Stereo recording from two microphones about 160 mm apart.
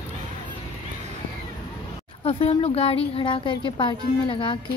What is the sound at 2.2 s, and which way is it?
A woman's voice, 40° left (ahead or behind).